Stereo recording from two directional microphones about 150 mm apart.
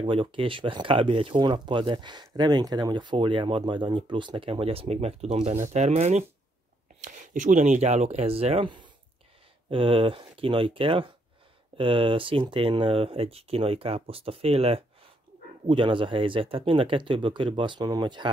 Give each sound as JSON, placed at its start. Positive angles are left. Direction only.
{"t": 0.0, "sound": "speech", "side_deg": -35}